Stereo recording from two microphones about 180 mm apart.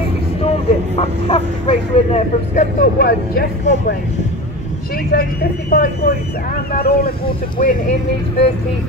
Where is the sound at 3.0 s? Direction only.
60° left (ahead or behind).